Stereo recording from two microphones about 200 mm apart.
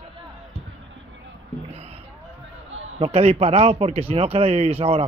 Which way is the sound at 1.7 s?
30° right (ahead or behind).